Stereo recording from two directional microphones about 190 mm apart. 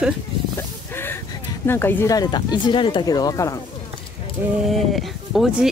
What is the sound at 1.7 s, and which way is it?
Speech, 10° left (ahead or behind).